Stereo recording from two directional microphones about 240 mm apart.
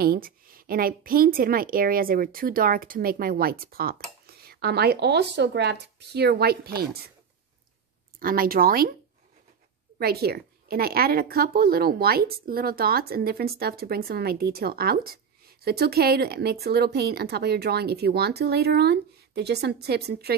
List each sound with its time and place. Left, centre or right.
0.0 s a woman's voice: right
8.2 s a woman's voice: right
9.9 s a woman's voice: right